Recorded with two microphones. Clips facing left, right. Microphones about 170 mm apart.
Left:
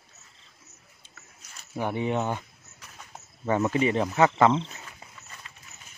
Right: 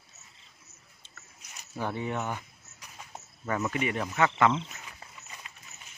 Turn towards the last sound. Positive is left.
turn(degrees=35)  # may be behind; listen again after turning